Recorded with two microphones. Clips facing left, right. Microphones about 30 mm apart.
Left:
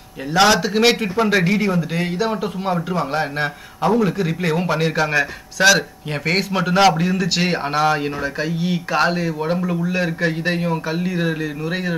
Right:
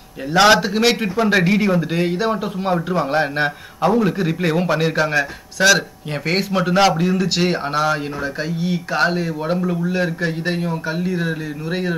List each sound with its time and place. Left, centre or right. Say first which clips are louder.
0.5 s speech: right 3 dB; centre
1.0 s a man's voice: even; centre
1.3 s speech: right 1 dB; centre
3.1 s speech: right 3 dB; right
3.8 s a man's voice: right 1 dB; centre
11.0 s mantra: even; centre